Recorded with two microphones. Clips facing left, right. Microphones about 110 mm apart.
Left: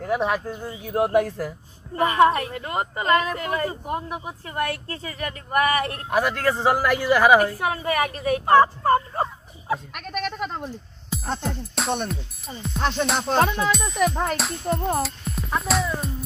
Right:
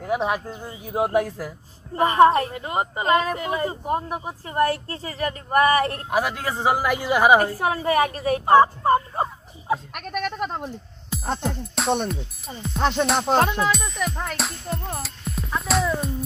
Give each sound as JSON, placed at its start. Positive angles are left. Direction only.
{"t": 0.0, "sound": "speech", "side_deg": -15}
{"t": 2.0, "sound": "a woman's voice", "side_deg": -30}
{"t": 2.5, "sound": "speech", "side_deg": -20}
{"t": 3.8, "sound": "a woman's voice", "side_deg": -35}
{"t": 6.0, "sound": "speech", "side_deg": -10}
{"t": 7.3, "sound": "a woman's voice", "side_deg": -35}
{"t": 8.5, "sound": "fowl", "side_deg": -20}
{"t": 9.9, "sound": "speech", "side_deg": -5}
{"t": 13.0, "sound": "music", "side_deg": 0}
{"t": 14.0, "sound": "speech", "side_deg": 30}
{"t": 14.3, "sound": "music", "side_deg": 0}
{"t": 15.0, "sound": "speech", "side_deg": 0}